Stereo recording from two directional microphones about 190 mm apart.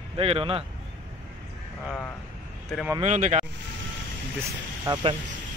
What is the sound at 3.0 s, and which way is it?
Speech, 40° right (ahead or behind).